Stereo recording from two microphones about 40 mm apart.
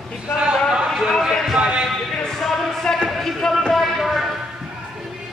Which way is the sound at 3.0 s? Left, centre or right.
Centre.